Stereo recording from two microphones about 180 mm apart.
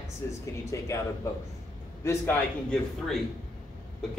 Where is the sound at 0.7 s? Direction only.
15° left (ahead or behind).